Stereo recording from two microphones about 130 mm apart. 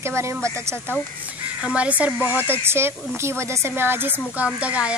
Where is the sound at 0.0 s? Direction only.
20° right (ahead or behind).